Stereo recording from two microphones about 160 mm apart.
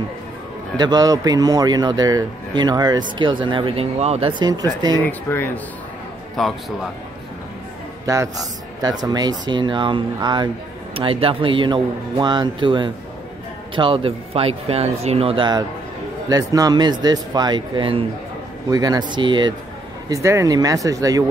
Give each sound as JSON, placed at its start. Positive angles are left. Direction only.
{"t": 0.7, "sound": "a man's voice", "side_deg": -25}
{"t": 5.0, "sound": "speech", "side_deg": 10}
{"t": 6.3, "sound": "a man's voice", "side_deg": 0}
{"t": 8.1, "sound": "a man's voice", "side_deg": -20}
{"t": 20.1, "sound": "a man's voice", "side_deg": -20}